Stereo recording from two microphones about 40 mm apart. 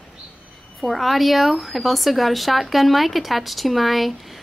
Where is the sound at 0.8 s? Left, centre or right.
Centre.